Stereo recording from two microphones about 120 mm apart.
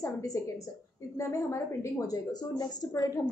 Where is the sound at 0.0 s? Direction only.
25° left (ahead or behind).